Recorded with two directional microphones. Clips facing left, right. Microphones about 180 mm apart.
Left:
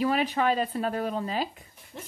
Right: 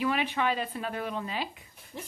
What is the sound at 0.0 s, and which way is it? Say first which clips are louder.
A woman's voice: left 3 dB; 40° left (ahead or behind).